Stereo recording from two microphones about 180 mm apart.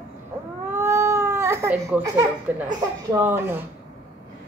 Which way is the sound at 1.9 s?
20° right (ahead or behind).